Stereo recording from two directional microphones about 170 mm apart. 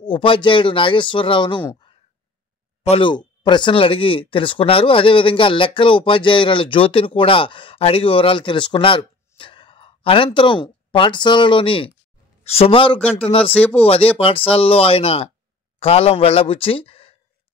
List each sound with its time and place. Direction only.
0.0 s a man's voice: 30° left (ahead or behind)
1.6 s speech: 20° left (ahead or behind)
2.8 s speech: 35° left (ahead or behind)